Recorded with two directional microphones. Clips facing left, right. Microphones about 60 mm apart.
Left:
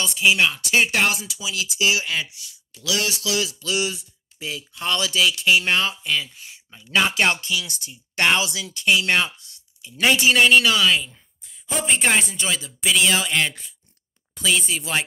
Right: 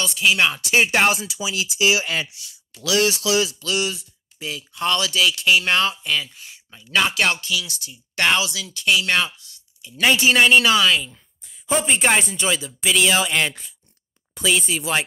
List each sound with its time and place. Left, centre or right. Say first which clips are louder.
0.0 s speech: even; centre
0.4 s speech: right 1 dB; centre
1.5 s speech: right 2 dB; right
2.7 s speech: right 5 dB; right
3.5 s speech: right 1 dB; centre
7.1 s speech: even; left
7.9 s speech: even; centre
8.4 s speech: right 1 dB; left
9.9 s speech: right 1 dB; centre